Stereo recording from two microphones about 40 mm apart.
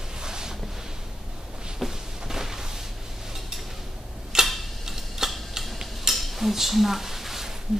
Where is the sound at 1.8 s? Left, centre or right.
Centre.